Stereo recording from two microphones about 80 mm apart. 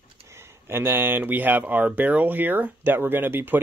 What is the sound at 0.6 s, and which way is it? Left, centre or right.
Speech, right.